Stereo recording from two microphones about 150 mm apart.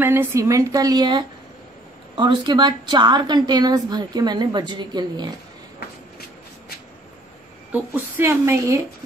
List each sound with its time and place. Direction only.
0.0 s a woman's voice: 15° right (ahead or behind)
7.7 s a woman's voice: 15° right (ahead or behind)